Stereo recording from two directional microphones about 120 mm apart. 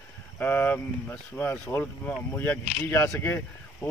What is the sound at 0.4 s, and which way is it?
Speech, 15° left (ahead or behind).